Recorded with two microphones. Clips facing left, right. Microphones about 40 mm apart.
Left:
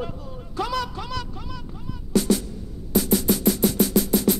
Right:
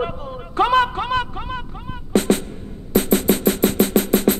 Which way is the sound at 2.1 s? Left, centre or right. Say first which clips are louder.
Right 3 dB; right.